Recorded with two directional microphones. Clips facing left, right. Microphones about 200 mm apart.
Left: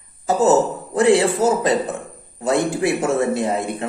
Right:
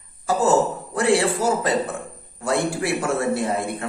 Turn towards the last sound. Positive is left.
turn(degrees=20)  # may be behind; listen again after turning